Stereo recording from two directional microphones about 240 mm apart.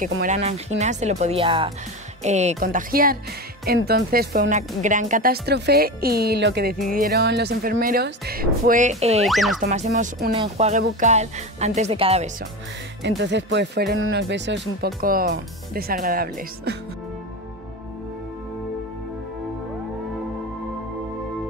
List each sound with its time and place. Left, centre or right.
0.2 s speech: right
9.2 s speech: centre
9.6 s speech: right
13.2 s speech: right